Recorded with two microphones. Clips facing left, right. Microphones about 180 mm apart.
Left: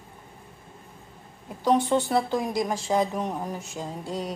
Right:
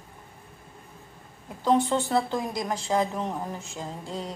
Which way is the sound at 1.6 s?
10° left (ahead or behind).